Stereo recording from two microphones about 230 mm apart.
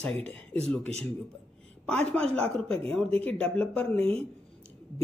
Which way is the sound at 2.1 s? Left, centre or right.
Centre.